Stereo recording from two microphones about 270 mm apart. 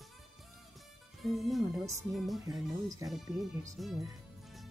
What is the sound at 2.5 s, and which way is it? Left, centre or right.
Speech, centre.